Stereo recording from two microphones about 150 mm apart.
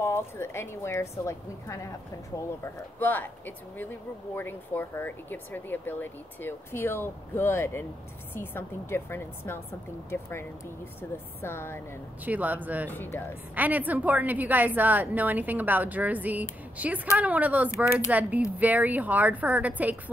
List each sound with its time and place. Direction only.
0.0 s a woman's voice: 15° left (ahead or behind)
11.0 s speech: 15° left (ahead or behind)
12.3 s a woman's voice: 10° right (ahead or behind)
12.9 s speech: 15° left (ahead or behind)
13.6 s a woman's voice: 10° right (ahead or behind)